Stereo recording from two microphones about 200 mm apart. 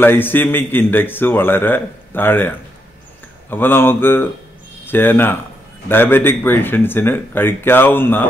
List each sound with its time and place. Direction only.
0.0 s a man's voice: 10° left (ahead or behind)